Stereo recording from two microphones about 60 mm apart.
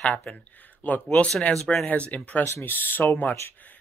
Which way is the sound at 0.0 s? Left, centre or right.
Left.